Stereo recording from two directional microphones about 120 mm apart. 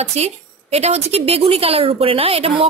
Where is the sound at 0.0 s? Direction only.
65° right (ahead or behind).